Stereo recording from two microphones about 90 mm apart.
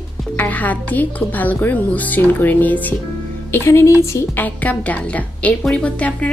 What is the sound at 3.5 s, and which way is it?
Speech, 30° left (ahead or behind).